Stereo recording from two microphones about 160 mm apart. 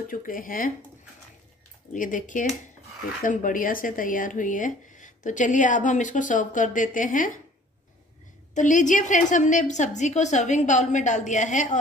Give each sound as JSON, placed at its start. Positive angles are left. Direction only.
{"t": 0.1, "sound": "speech", "side_deg": 60}
{"t": 2.0, "sound": "speech", "side_deg": 55}
{"t": 8.5, "sound": "a woman's voice", "side_deg": 50}